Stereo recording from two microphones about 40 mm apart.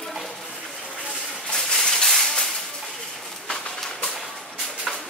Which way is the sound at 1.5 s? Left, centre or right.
Centre.